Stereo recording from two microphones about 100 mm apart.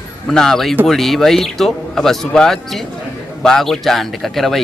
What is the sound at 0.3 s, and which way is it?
Speech, 5° left (ahead or behind).